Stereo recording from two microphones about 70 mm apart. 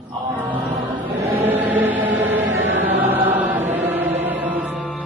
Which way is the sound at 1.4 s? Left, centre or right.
Right.